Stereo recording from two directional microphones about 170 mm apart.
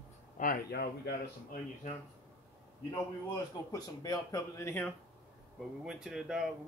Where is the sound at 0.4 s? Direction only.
60° left (ahead or behind).